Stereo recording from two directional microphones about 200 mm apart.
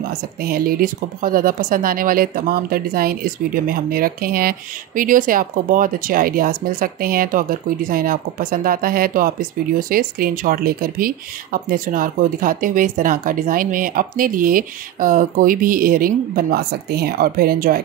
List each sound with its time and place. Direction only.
0.4 s speech: 45° right (ahead or behind)